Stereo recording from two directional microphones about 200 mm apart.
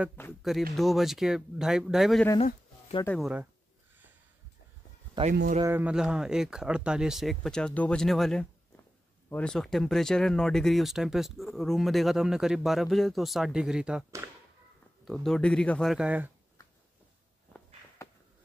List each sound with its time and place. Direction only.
0.4 s speech: centre (ahead or behind)
5.2 s speech: 20° right (ahead or behind)
5.6 s speech: 10° right (ahead or behind)
15.0 s speech: centre (ahead or behind)
18.0 s a sound: 15° left (ahead or behind)